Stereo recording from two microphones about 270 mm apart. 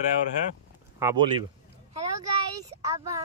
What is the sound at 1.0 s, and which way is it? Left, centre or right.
Speech, centre.